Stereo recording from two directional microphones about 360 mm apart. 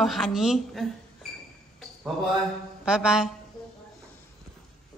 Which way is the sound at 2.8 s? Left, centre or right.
Centre.